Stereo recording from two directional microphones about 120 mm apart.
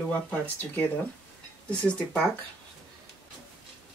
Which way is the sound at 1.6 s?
10° left (ahead or behind).